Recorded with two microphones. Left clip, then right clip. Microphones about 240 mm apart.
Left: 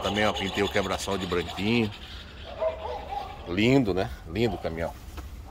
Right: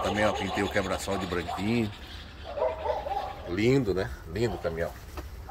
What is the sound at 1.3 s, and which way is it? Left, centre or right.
Speech, centre.